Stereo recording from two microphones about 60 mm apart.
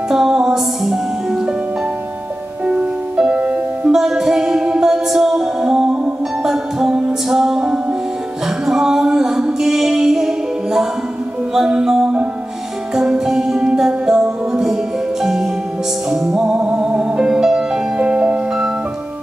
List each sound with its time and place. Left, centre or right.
0.1 s music: centre
3.3 s music: centre
3.9 s music: centre